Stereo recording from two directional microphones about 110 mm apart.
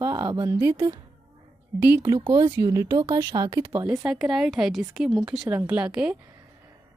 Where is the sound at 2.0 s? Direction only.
40° right (ahead or behind).